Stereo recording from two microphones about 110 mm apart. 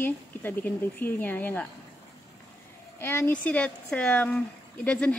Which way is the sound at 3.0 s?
20° left (ahead or behind).